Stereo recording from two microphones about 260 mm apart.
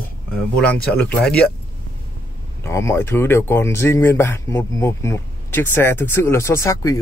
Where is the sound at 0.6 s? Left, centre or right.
Centre.